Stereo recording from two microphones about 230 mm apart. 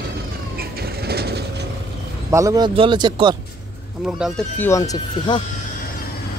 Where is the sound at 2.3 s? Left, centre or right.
Centre.